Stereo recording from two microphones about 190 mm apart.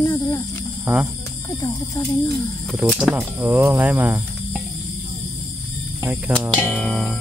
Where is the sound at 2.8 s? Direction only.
Centre (ahead or behind).